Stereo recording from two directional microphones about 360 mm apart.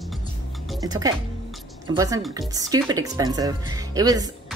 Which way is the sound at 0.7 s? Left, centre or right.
Centre.